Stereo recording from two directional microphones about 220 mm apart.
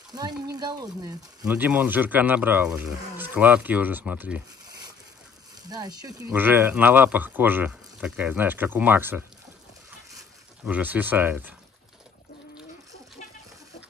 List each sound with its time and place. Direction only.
0.1 s speech: 15° right (ahead or behind)
1.4 s speech: 5° right (ahead or behind)
10.6 s speech: 5° right (ahead or behind)